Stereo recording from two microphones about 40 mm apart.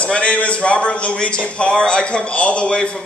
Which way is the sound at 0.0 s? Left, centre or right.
Left.